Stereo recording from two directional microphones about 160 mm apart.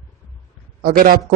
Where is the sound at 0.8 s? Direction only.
65° right (ahead or behind).